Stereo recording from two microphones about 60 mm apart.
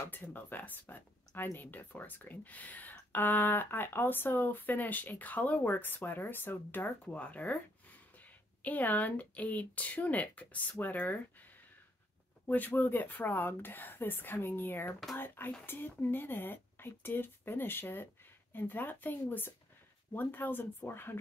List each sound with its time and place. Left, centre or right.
0.1 s speech: left
7.1 s speech: left
8.6 s speech: left
12.4 s speech: left